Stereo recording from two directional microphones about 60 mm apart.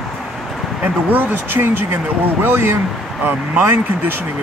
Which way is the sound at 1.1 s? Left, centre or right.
Right.